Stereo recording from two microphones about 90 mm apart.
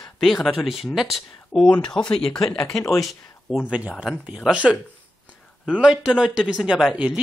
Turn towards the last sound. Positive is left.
turn(degrees=-5)  # may be behind; listen again after turning